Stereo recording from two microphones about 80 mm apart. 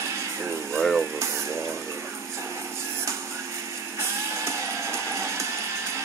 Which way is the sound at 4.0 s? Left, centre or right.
Right.